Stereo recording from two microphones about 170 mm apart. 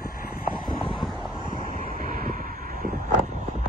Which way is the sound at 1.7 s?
55° right (ahead or behind).